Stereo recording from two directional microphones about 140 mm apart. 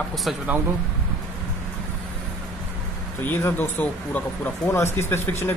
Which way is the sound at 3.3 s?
15° left (ahead or behind).